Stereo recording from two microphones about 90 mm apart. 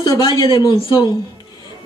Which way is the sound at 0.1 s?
40° left (ahead or behind).